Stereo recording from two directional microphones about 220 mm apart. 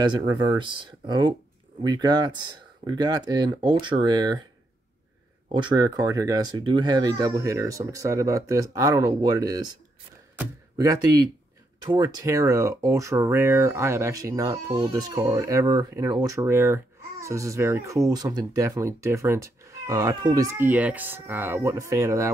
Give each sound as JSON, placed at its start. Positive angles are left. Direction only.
{"t": 0.0, "sound": "speech", "side_deg": -20}
{"t": 5.5, "sound": "speech", "side_deg": -20}